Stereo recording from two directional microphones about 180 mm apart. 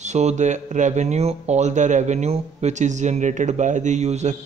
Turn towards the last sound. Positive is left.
turn(degrees=-40)  # may be behind; listen again after turning